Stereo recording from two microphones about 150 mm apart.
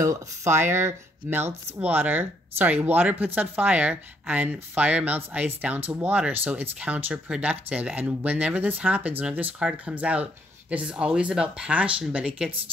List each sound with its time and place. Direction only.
0.0 s speech: 20° right (ahead or behind)